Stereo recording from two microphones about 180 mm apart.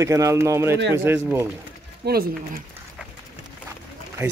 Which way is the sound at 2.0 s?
60° right (ahead or behind).